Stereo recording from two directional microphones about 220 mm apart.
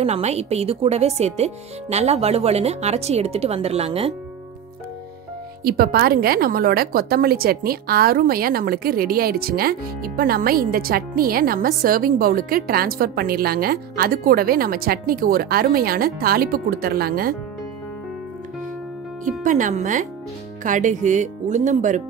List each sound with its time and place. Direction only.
0.0 s speech: 30° right (ahead or behind)
5.6 s a woman's voice: 45° right (ahead or behind)
19.4 s speech: 35° right (ahead or behind)